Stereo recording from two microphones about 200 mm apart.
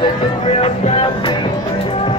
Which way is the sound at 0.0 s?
30° left (ahead or behind).